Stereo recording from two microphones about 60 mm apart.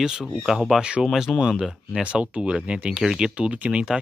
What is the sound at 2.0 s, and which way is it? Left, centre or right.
Speech, centre.